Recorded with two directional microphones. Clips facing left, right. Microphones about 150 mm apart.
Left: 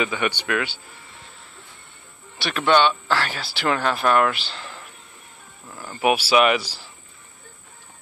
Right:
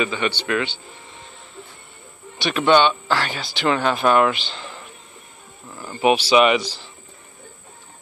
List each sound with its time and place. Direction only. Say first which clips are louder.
0.0 s speech: right 1 dB; 15° left (ahead or behind)
2.3 s speech: right 3 dB; centre (ahead or behind)
5.9 s speech: right 3 dB; 5° left (ahead or behind)